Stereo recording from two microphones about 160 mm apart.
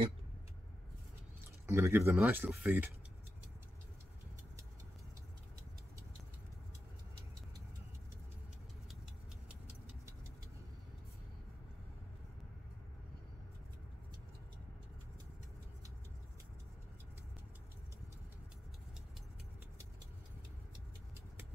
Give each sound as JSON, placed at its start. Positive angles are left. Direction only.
{"t": 1.7, "sound": "speech", "side_deg": -15}